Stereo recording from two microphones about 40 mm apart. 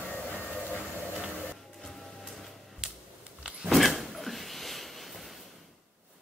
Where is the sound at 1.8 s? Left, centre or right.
Centre.